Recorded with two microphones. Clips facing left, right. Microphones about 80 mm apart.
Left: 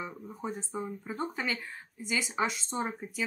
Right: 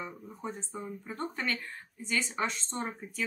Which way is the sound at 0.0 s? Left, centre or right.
Centre.